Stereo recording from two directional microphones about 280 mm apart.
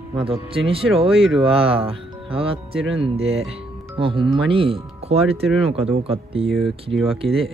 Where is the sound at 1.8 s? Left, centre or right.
Centre.